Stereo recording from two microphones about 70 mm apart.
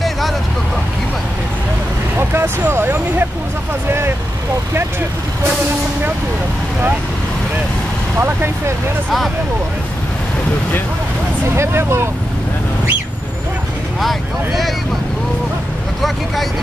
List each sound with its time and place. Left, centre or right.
2.1 s speech: right
8.2 s speech: right
11.5 s speech: right
14.0 s speech: centre